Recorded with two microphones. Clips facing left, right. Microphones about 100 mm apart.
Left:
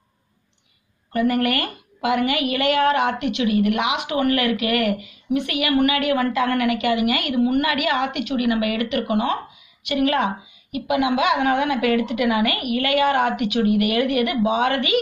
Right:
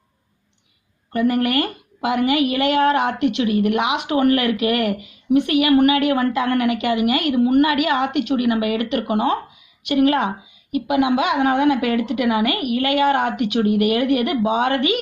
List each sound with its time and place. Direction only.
1.1 s a woman's voice: 25° right (ahead or behind)